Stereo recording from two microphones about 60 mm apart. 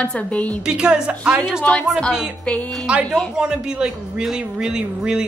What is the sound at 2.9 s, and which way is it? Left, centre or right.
Speech, centre.